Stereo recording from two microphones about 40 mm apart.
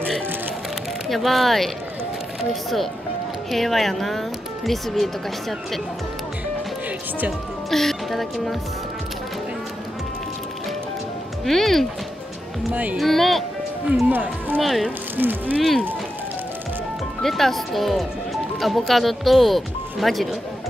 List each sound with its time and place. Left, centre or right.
1.0 s speech: centre
3.5 s speech: centre
7.7 s speech: centre
11.4 s speech: centre
12.9 s speech: centre
14.0 s speech: right
14.6 s speech: centre
15.1 s speech: right
17.2 s speech: centre